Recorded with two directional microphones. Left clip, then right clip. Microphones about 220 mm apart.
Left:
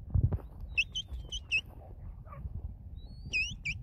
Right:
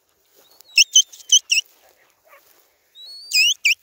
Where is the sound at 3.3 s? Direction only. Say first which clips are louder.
Right 17 dB; 35° right (ahead or behind).